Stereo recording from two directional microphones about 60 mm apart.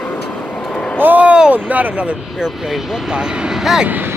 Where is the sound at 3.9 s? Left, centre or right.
Right.